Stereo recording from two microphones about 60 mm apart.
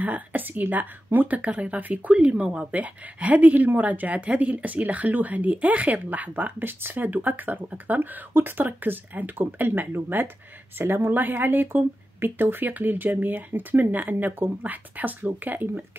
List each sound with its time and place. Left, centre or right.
0.0 s speech: right